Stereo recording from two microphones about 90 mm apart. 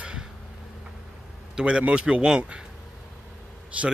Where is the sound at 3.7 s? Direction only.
15° right (ahead or behind).